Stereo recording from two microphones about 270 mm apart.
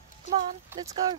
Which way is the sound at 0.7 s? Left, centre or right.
Centre.